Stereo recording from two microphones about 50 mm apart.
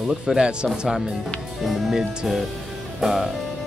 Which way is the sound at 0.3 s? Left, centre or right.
Centre.